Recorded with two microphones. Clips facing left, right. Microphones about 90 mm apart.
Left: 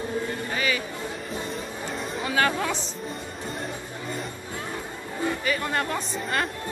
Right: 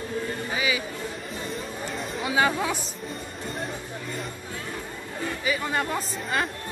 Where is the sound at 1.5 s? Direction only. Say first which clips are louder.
Even; centre (ahead or behind).